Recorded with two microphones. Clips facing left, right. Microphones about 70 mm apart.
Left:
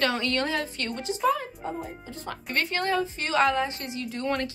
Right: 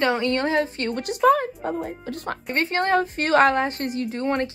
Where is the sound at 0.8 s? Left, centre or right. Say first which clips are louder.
Right 7 dB; right.